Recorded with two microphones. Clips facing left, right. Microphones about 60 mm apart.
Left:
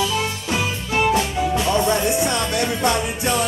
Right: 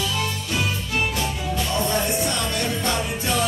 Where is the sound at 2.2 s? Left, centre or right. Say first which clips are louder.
Left 4 dB; centre.